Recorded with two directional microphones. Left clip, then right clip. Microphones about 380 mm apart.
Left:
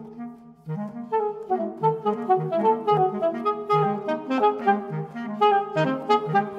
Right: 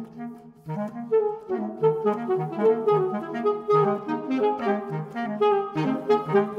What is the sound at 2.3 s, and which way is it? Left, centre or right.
Music, left.